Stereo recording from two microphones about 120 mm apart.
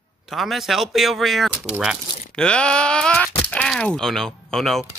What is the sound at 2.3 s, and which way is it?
Wail, 10° left (ahead or behind).